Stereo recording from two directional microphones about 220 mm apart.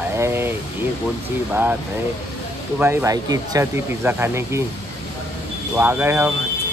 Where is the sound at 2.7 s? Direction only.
10° right (ahead or behind).